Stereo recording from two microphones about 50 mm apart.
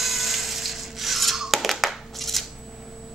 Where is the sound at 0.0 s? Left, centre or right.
Centre.